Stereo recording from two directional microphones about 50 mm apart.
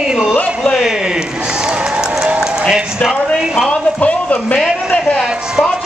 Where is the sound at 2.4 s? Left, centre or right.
Centre.